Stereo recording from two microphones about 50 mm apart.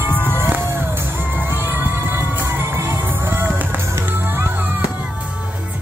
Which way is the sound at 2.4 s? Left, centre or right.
Right.